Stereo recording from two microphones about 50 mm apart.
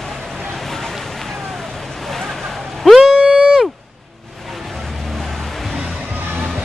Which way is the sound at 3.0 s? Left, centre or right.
Centre.